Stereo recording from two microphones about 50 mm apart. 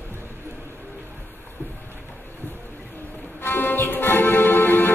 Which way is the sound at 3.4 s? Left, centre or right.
Left.